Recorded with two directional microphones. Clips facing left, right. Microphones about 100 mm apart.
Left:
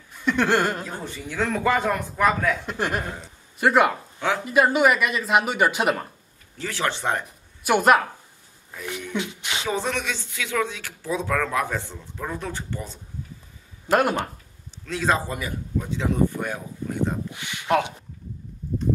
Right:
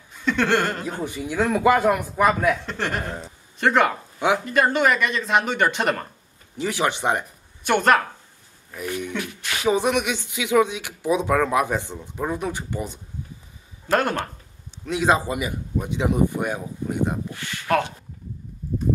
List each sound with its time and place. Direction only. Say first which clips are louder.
0.2 s speech: even; 10° left (ahead or behind)
1.0 s speech: right 4 dB; 15° right (ahead or behind)
2.6 s speech: left 1 dB; 10° left (ahead or behind)
6.6 s speech: right 3 dB; 15° right (ahead or behind)
7.6 s speech: left 1 dB; 5° left (ahead or behind)
9.1 s speech: left 1 dB; 20° left (ahead or behind)
9.7 s speech: right 7 dB; 15° right (ahead or behind)
13.8 s speech: left 1 dB; 10° left (ahead or behind)
14.9 s speech: right 3 dB; 15° right (ahead or behind)
17.3 s speech: even; 15° left (ahead or behind)